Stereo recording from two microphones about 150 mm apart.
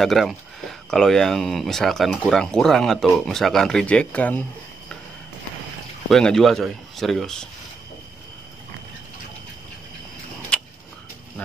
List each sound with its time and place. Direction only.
0.0 s speech: centre (ahead or behind)
6.0 s speech: 5° left (ahead or behind)
10.5 s tick-tock: 5° left (ahead or behind)